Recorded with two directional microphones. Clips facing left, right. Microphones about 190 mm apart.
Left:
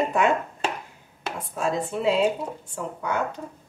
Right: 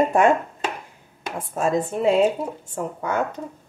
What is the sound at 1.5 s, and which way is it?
Speech, 50° right (ahead or behind).